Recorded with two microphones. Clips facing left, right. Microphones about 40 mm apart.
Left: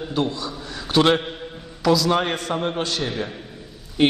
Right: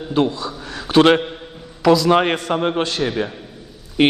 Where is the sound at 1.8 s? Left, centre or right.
Right.